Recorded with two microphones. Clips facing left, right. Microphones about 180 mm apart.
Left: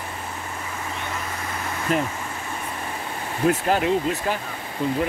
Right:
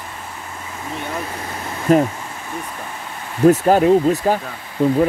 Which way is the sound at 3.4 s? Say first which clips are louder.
Right 9 dB; 40° right (ahead or behind).